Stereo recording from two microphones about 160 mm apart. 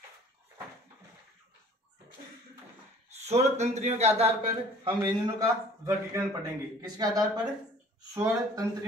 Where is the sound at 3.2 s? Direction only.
45° right (ahead or behind).